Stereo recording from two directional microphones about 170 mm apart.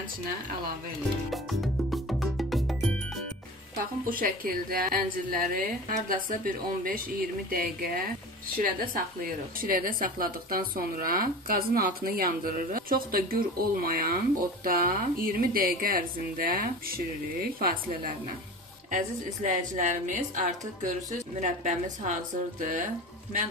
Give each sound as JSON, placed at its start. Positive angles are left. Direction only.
{"t": 1.3, "sound": "cowbell", "side_deg": 0}
{"t": 4.0, "sound": "a woman's voice", "side_deg": -55}